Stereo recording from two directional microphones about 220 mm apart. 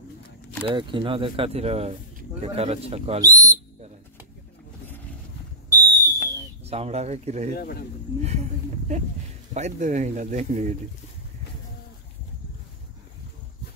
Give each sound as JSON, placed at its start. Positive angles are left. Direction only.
{"t": 0.7, "sound": "speech", "side_deg": -20}
{"t": 3.3, "sound": "a sound", "side_deg": -15}
{"t": 5.8, "sound": "whistle", "side_deg": -15}
{"t": 6.6, "sound": "speech", "side_deg": -30}
{"t": 7.5, "sound": "speech", "side_deg": 45}
{"t": 8.2, "sound": "speech", "side_deg": -30}